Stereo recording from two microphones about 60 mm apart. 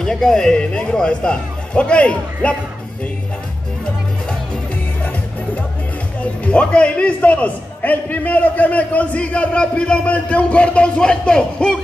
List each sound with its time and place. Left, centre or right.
0.0 s a man's voice: centre
6.4 s a man's voice: centre